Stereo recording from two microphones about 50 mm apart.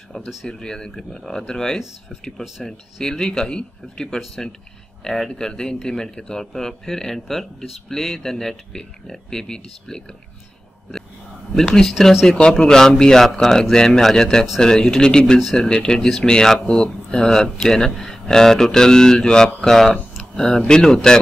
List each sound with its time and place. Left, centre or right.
0.1 s speech: centre
1.8 s speech: centre
2.6 s speech: centre
12.0 s speech: centre
12.3 s speech: centre